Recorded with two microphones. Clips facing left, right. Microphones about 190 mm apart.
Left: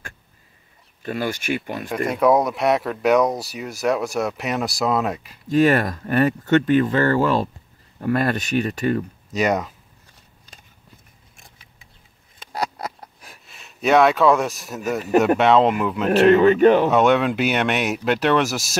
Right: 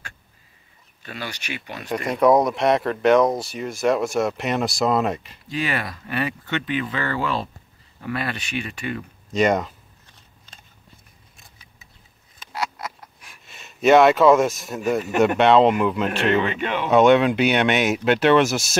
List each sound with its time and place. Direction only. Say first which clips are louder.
1.0 s speech: left 9 dB; 45° left (ahead or behind)
2.0 s speech: right 1 dB; centre (ahead or behind)
5.5 s speech: left 10 dB; 45° left (ahead or behind)
9.3 s speech: right 1 dB; 5° left (ahead or behind)
12.5 s a sound: left 2 dB; 35° left (ahead or behind)
13.5 s speech: right 3 dB; centre (ahead or behind)
16.1 s speech: left 8 dB; 40° left (ahead or behind)
16.9 s speech: right 2 dB; centre (ahead or behind)